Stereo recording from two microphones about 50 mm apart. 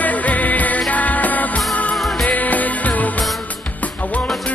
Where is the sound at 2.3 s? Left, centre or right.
Left.